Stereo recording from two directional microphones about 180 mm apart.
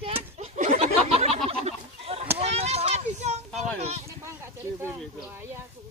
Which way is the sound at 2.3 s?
35° right (ahead or behind).